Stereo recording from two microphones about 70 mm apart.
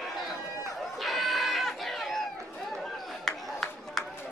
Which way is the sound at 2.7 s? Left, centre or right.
Centre.